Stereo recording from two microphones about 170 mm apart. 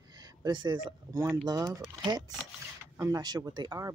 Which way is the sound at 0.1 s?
20° right (ahead or behind).